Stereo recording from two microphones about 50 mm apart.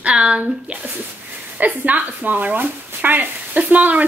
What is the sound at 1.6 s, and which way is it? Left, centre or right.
Speech, right.